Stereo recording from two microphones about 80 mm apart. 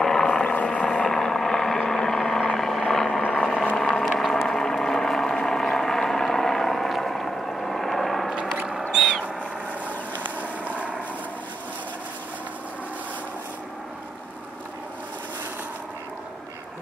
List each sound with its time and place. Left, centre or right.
0.0 s vehicle: centre
3.2 s a sound: centre
10.2 s vehicle: centre